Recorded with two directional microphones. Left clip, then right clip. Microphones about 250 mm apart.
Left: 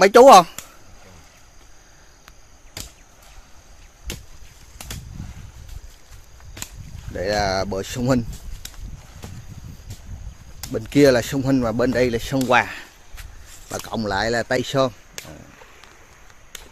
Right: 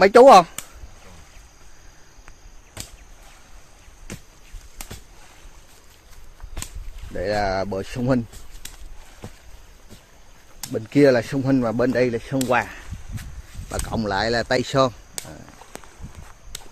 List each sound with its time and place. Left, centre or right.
0.0 s speech: centre
4.8 s a sound: centre
7.2 s speech: centre
8.6 s a sound: left
10.7 s speech: centre
13.1 s speech: centre